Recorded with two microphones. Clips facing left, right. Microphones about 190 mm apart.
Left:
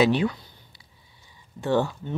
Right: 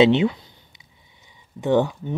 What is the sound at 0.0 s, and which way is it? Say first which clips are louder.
Speech: right 5 dB; 25° right (ahead or behind).